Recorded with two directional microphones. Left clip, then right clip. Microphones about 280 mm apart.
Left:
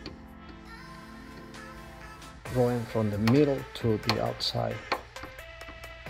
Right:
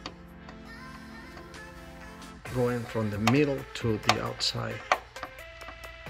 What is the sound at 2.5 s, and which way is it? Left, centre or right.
Speech, centre.